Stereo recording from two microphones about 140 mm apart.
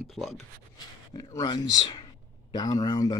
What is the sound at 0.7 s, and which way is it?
Speech, 25° left (ahead or behind).